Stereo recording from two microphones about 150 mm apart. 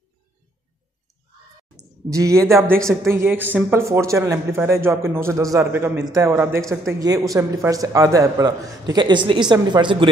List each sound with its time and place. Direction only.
2.0 s a man's voice: 20° right (ahead or behind)